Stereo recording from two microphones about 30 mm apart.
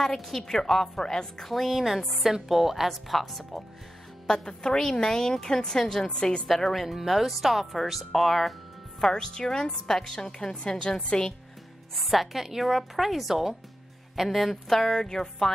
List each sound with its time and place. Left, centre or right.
0.0 s a woman's voice: centre
1.5 s speech: centre
2.3 s a woman's voice: centre
4.3 s a woman's voice: left
6.7 s speech: centre
9.1 s a woman's voice: left
9.7 s a woman's voice: centre
10.1 s a woman's voice: left
11.9 s speech: centre
14.7 s a woman's voice: centre
15.0 s a woman's voice: left